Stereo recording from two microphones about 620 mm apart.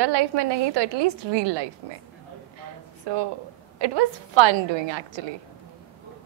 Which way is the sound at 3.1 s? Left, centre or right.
Right.